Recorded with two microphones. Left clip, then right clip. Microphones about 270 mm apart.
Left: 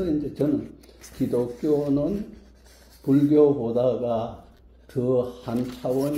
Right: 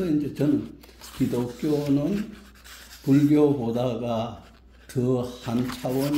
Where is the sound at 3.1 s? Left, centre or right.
Right.